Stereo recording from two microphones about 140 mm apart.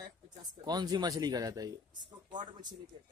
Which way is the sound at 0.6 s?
30° right (ahead or behind).